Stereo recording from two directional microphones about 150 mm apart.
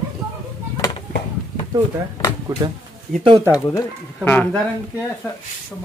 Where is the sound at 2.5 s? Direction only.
20° right (ahead or behind).